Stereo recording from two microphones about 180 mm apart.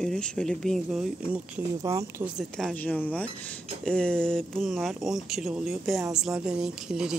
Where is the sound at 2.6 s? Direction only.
5° left (ahead or behind).